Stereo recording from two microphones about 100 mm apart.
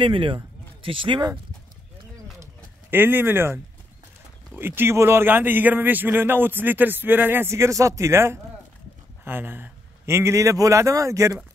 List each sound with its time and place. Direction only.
0.0 s speech: 60° right (ahead or behind)
2.4 s a sound: 20° right (ahead or behind)
4.6 s a man's voice: 20° right (ahead or behind)